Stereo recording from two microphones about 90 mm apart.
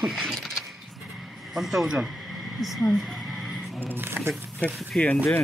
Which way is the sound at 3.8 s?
25° right (ahead or behind).